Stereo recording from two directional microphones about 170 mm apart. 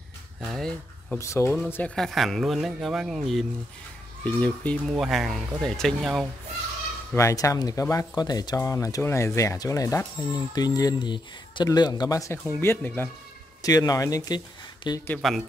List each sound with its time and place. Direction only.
0.4 s speech: centre (ahead or behind)
1.1 s speech: 15° left (ahead or behind)
7.2 s speech: 15° left (ahead or behind)
13.6 s speech: 20° left (ahead or behind)
15.2 s speech: centre (ahead or behind)